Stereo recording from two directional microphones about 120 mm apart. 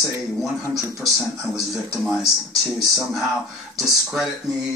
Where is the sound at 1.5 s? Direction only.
5° right (ahead or behind).